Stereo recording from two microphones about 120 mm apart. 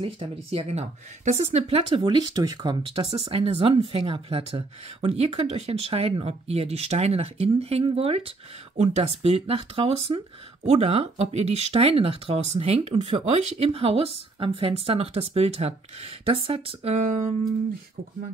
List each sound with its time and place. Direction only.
0.0 s speech: 50° right (ahead or behind)
2.0 s speech: 35° right (ahead or behind); by 8.3 s 55° right (ahead or behind)
8.7 s speech: 70° right (ahead or behind)
12.9 s speech: 50° right (ahead or behind)